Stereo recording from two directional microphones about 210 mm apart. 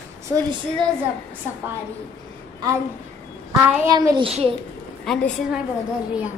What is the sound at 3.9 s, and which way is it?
Speech, 20° right (ahead or behind).